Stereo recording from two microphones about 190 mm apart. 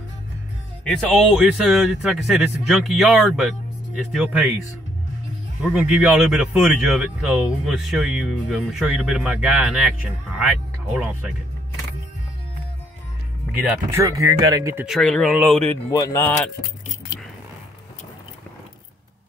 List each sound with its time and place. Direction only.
0.8 s speech: centre (ahead or behind)
5.6 s speech: 5° right (ahead or behind)
13.7 s speech: 15° right (ahead or behind)
14.9 s speech: 5° left (ahead or behind)
15.9 s speech: 15° left (ahead or behind)